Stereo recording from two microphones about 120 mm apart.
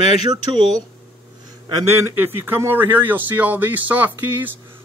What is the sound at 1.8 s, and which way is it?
Speech, 25° right (ahead or behind).